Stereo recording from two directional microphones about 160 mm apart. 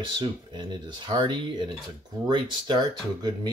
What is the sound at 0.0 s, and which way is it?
Speech, 30° right (ahead or behind).